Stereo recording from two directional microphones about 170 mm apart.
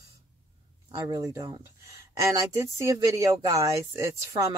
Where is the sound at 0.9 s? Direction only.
25° right (ahead or behind).